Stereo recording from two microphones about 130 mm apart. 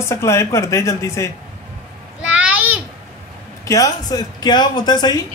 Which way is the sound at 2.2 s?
10° right (ahead or behind).